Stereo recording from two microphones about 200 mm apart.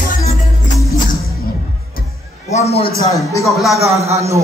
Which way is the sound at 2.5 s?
30° left (ahead or behind).